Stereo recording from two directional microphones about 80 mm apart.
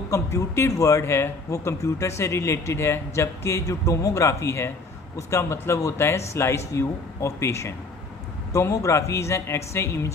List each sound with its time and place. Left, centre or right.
0.1 s speech: left